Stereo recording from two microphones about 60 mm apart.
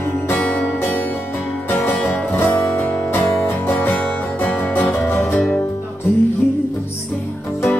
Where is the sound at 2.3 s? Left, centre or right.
Left.